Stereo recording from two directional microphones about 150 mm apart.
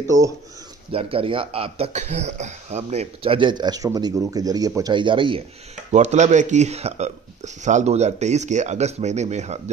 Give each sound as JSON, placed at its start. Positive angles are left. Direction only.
{"t": 0.9, "sound": "speech", "side_deg": -40}
{"t": 5.9, "sound": "speech", "side_deg": -50}